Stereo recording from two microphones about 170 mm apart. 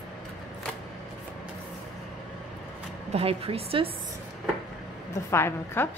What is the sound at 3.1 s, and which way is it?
Speech, 35° right (ahead or behind).